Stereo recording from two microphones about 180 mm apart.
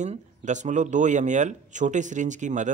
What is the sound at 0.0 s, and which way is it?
Speech, 40° right (ahead or behind).